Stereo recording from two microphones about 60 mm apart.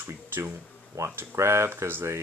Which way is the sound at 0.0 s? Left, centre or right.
Right.